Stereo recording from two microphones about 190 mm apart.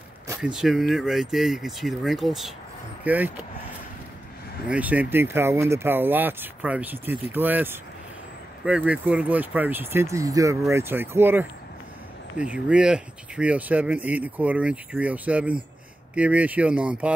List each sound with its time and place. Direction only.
0.4 s speech: centre (ahead or behind)
4.6 s speech: 10° right (ahead or behind)